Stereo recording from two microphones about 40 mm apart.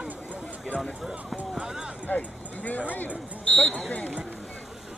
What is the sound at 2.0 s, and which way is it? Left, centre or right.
Speech, left.